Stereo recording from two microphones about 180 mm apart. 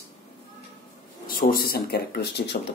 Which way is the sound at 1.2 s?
55° left (ahead or behind).